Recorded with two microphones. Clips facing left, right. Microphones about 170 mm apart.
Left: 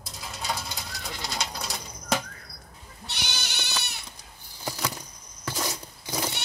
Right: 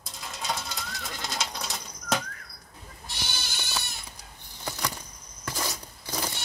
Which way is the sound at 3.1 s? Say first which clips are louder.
Left 2 dB; 75° left (ahead or behind).